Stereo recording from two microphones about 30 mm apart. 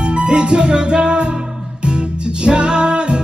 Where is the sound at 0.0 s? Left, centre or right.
Right.